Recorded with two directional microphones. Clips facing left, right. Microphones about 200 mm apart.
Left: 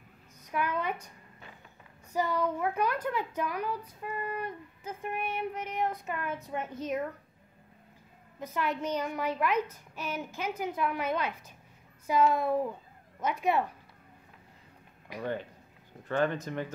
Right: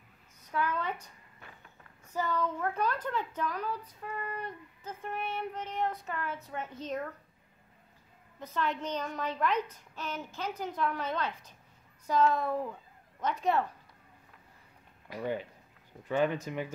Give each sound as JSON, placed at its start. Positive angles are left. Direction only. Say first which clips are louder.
{"t": 0.5, "sound": "a sound", "louder": "left 1 dB", "side_deg": 15}
{"t": 2.1, "sound": "a woman's voice", "louder": "left 3 dB", "side_deg": 10}
{"t": 8.4, "sound": "a woman's voice", "louder": "left 1 dB", "side_deg": 10}
{"t": 15.1, "sound": "a woman's voice", "louder": "even", "side_deg": 15}
{"t": 16.1, "sound": "speech", "louder": "even", "side_deg": -10}